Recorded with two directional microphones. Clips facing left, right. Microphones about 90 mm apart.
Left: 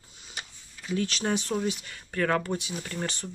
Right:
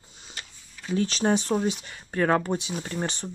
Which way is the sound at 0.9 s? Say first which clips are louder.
Right 4 dB; 30° right (ahead or behind).